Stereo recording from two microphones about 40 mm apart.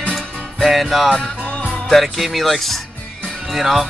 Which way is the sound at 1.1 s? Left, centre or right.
Left.